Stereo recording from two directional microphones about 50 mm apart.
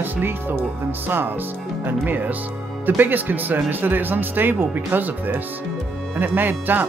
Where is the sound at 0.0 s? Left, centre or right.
Right.